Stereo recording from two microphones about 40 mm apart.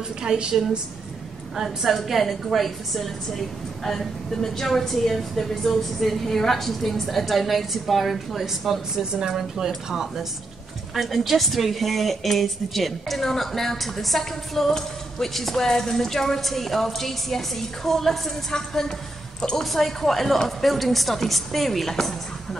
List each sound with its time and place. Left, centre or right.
0.2 s speech: centre
1.6 s a woman's voice: centre